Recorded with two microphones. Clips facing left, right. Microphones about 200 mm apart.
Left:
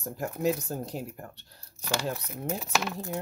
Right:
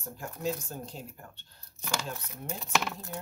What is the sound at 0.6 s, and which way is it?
Speech, 35° left (ahead or behind).